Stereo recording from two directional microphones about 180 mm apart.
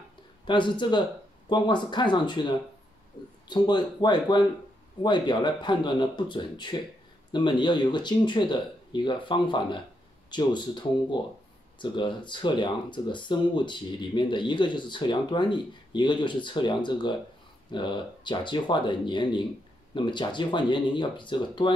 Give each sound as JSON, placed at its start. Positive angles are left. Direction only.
{"t": 0.5, "sound": "speech", "side_deg": 25}